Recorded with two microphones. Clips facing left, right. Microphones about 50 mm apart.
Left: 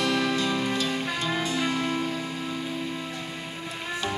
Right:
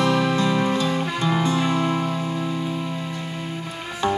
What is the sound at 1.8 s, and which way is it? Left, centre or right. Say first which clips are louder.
Music: right 5 dB; centre.